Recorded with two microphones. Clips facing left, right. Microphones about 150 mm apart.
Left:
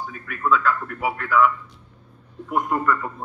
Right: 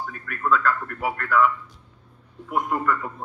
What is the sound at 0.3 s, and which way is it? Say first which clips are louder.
A man's voice: left 1 dB; centre (ahead or behind).